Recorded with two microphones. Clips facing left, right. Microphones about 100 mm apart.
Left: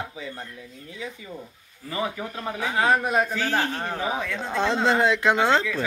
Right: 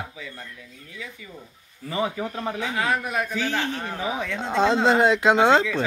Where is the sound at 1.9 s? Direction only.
25° right (ahead or behind).